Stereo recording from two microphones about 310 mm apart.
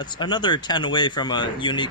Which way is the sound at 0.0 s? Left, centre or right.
Centre.